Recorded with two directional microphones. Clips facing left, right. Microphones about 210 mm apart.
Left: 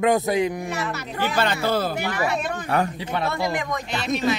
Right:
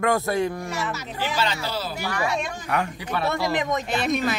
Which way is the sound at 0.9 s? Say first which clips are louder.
Left 3 dB; 55° left (ahead or behind).